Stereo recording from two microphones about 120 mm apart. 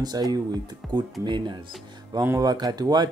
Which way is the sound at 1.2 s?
40° right (ahead or behind).